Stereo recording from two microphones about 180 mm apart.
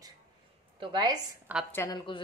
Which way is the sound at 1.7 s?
15° left (ahead or behind).